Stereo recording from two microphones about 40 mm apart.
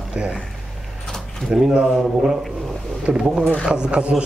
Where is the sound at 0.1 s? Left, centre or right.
Right.